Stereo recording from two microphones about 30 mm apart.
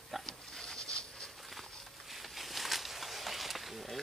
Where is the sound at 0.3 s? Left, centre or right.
Left.